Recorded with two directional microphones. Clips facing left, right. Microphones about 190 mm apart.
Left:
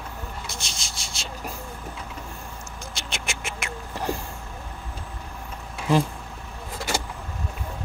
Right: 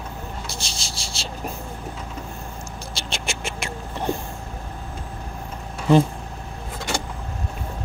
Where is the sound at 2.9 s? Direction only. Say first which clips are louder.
Right 4 dB; 30° right (ahead or behind).